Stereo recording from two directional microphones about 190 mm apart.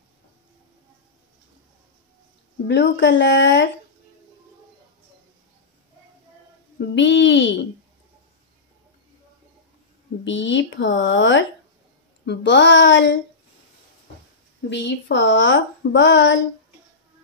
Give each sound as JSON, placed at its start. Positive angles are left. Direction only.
{"t": 2.7, "sound": "speech", "side_deg": 65}
{"t": 7.0, "sound": "a sound", "side_deg": 75}
{"t": 10.2, "sound": "speech", "side_deg": 75}
{"t": 14.7, "sound": "speech", "side_deg": 70}